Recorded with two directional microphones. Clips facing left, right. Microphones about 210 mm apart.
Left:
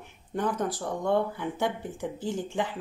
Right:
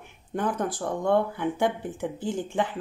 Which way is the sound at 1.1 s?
55° right (ahead or behind).